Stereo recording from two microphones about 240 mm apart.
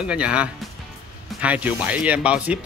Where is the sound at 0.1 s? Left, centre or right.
Centre.